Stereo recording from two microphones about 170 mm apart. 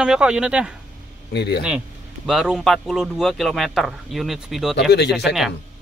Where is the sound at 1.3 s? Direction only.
80° left.